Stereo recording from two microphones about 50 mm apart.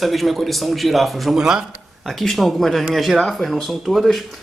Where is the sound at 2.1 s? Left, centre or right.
Centre.